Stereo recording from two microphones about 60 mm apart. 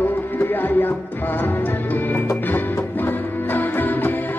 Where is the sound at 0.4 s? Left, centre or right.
Left.